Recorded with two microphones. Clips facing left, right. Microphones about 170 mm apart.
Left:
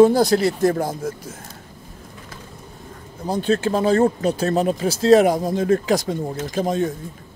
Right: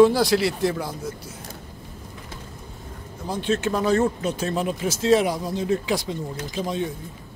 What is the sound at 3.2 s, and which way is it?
Speech, 35° left (ahead or behind).